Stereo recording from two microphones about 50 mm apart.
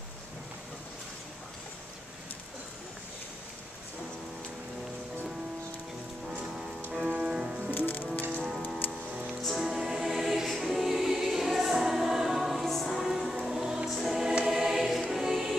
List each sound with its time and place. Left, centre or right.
7.1 s music: centre
7.7 s music: left
9.4 s music: centre
13.8 s choir: centre